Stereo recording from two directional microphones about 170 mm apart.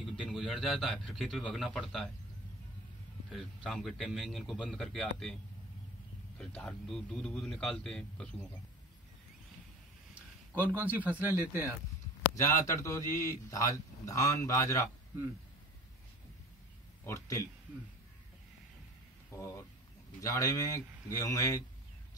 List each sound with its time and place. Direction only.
0.2 s a man's voice: 5° right (ahead or behind)
3.3 s a man's voice: centre (ahead or behind)
6.3 s a man's voice: 5° left (ahead or behind)
10.7 s speech: 10° right (ahead or behind)
12.4 s a man's voice: 20° left (ahead or behind)
17.0 s a man's voice: 20° left (ahead or behind)
19.3 s a man's voice: 15° left (ahead or behind)